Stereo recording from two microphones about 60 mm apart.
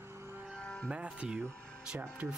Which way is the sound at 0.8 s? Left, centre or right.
Centre.